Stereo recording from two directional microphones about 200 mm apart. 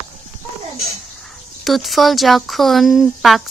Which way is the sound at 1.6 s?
Centre (ahead or behind).